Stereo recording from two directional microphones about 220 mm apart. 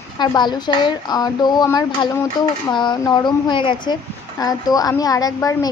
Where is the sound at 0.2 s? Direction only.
20° left (ahead or behind).